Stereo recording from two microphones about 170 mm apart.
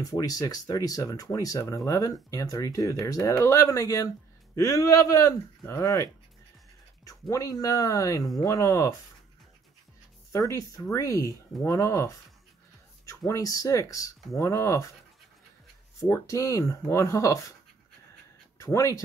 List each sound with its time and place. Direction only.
0.0 s speech: 20° left (ahead or behind)
7.1 s speech: 20° left (ahead or behind)
10.5 s speech: 20° left (ahead or behind)
16.0 s speech: 20° left (ahead or behind)
18.6 s speech: 20° left (ahead or behind)